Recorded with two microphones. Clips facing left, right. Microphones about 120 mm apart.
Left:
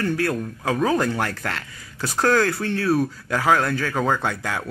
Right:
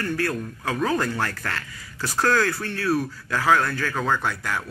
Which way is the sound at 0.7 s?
10° left (ahead or behind).